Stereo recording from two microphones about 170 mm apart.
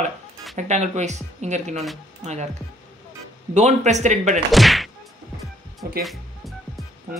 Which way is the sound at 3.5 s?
45° right (ahead or behind).